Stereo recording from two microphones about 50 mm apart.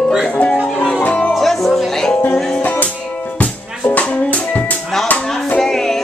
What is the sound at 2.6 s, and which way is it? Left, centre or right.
Music, left.